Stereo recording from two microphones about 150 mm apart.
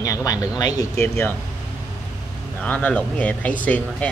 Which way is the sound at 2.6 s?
10° left (ahead or behind).